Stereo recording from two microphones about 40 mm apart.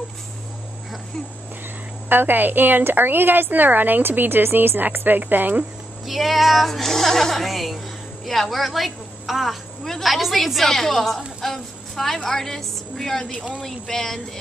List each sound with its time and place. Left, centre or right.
2.0 s a woman's voice: right
6.0 s a woman's voice: centre